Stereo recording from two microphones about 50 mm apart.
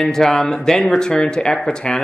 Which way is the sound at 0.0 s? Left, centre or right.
Centre.